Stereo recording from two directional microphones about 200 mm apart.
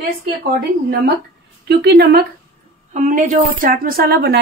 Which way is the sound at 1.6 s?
55° right (ahead or behind).